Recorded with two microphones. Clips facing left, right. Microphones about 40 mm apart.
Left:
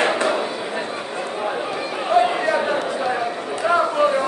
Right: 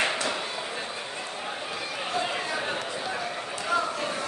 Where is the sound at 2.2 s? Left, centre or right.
Left.